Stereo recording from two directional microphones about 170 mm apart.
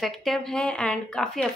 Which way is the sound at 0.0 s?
Centre (ahead or behind).